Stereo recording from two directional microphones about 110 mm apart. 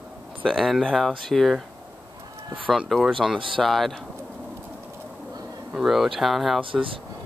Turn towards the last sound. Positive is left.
turn(degrees=0)  # may be behind; listen again after turning